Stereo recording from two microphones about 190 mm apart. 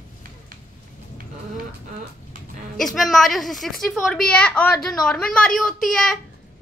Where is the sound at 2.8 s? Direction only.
Centre (ahead or behind).